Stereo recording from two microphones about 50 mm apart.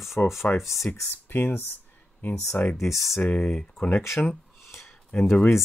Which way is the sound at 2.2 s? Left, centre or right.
Left.